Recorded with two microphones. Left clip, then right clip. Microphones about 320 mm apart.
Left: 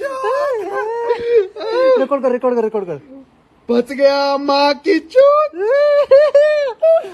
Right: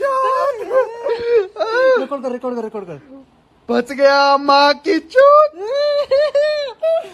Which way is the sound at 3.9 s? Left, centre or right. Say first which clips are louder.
Right 4 dB; right.